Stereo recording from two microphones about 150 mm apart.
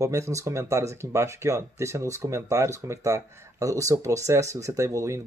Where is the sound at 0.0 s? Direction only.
20° right (ahead or behind).